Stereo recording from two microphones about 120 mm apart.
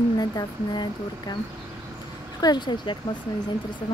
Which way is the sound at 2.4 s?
35° left (ahead or behind).